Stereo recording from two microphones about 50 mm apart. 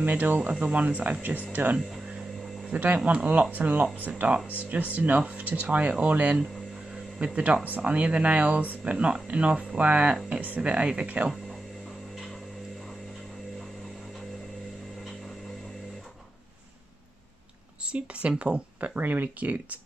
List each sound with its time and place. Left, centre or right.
0.0 s speech: right
7.3 s speech: right
17.9 s a sound: right
18.4 s speech: right
18.9 s speech: right